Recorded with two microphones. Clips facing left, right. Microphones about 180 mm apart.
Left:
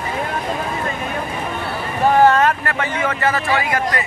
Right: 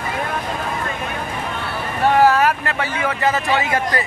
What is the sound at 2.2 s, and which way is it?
Vehicle, 5° right (ahead or behind).